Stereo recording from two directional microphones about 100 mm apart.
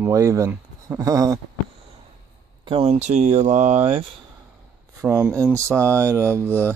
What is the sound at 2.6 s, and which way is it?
Speech, 70° right (ahead or behind).